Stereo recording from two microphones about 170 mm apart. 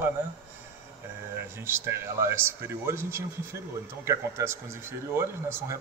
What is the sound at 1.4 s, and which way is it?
Speech, 15° right (ahead or behind).